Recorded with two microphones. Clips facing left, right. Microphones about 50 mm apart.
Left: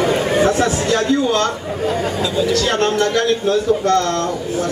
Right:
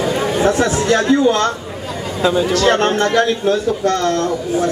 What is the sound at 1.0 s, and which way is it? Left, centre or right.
A man's voice, right.